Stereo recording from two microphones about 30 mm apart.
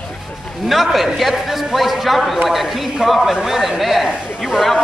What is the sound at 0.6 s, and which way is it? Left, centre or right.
A man's voice, centre.